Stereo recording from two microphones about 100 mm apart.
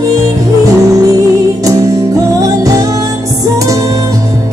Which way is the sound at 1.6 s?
35° right (ahead or behind).